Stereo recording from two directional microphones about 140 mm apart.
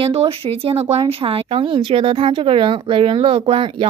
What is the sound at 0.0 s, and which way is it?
A woman's voice, 40° right (ahead or behind).